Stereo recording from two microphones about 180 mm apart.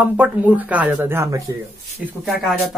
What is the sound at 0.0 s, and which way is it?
Speech, 10° right (ahead or behind).